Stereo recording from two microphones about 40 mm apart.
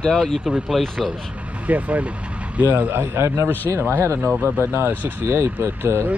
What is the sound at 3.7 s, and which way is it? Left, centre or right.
Speech, right.